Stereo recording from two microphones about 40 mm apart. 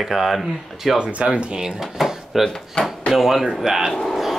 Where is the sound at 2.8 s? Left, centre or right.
Left.